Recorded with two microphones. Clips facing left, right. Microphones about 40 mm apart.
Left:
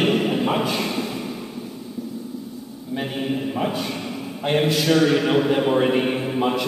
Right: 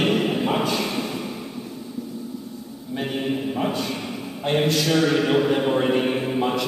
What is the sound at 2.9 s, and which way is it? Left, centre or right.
A man's voice, centre.